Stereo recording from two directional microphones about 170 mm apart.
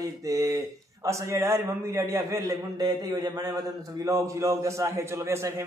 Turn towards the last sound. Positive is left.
turn(degrees=-15)  # may be behind; listen again after turning